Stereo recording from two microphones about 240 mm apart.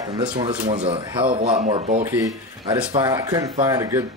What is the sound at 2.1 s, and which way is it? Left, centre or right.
Speech, centre.